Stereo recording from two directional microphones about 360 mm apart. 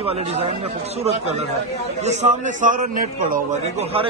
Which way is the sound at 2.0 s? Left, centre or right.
Centre.